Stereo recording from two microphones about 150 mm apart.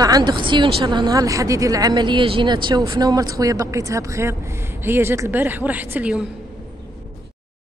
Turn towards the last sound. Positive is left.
turn(degrees=-10)  # may be behind; listen again after turning